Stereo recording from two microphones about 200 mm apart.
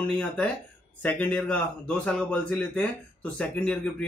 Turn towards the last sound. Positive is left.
turn(degrees=5)  # may be behind; listen again after turning